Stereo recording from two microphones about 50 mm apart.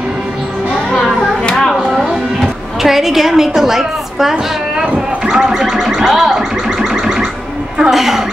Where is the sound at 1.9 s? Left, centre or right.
Centre.